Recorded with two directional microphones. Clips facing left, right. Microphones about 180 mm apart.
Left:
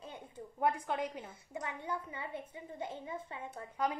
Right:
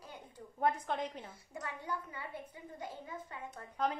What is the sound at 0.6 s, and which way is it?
A woman's voice, 10° left (ahead or behind).